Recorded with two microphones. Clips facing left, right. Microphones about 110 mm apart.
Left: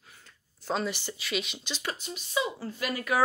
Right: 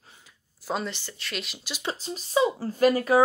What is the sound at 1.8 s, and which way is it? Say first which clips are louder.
Speech: right 6 dB; 35° right (ahead or behind).